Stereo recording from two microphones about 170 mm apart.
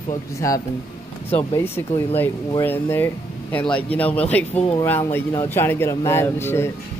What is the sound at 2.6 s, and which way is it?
A man's voice, 10° left (ahead or behind).